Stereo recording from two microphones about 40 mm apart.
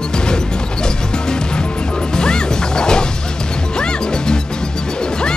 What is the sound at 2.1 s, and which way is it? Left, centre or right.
Smash, centre.